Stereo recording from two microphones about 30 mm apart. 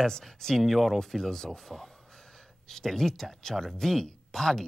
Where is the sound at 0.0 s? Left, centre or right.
Centre.